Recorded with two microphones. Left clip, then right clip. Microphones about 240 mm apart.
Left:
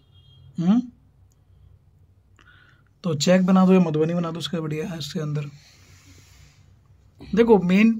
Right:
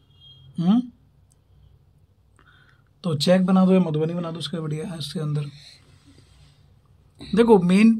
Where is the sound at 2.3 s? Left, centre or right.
Centre.